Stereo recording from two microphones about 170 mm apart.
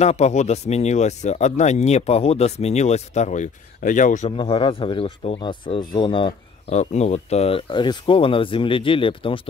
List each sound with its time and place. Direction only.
0.0 s speech: 40° left (ahead or behind)
4.4 s speech: 30° left (ahead or behind)
6.7 s speech: 40° left (ahead or behind)